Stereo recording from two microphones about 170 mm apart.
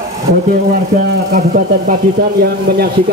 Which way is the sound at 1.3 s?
50° right (ahead or behind).